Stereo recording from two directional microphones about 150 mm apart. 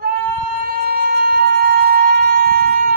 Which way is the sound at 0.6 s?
85° right.